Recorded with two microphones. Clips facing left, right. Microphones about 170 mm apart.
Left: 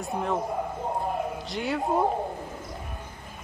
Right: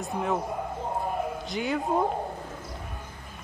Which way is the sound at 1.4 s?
Centre (ahead or behind).